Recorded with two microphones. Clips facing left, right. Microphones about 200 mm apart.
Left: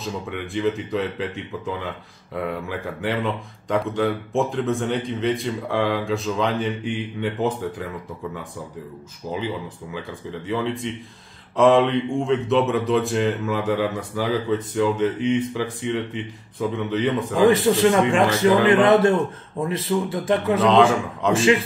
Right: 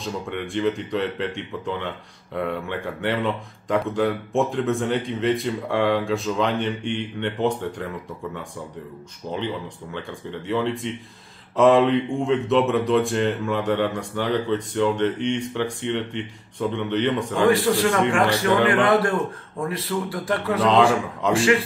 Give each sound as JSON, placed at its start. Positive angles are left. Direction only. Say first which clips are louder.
{"t": 0.0, "sound": "speech", "louder": "even", "side_deg": 0}
{"t": 9.9, "sound": "speech", "louder": "even", "side_deg": 0}
{"t": 17.5, "sound": "a man's voice", "louder": "left 2 dB", "side_deg": 20}
{"t": 20.6, "sound": "speech", "louder": "even", "side_deg": 0}
{"t": 21.3, "sound": "a man's voice", "louder": "left 1 dB", "side_deg": 20}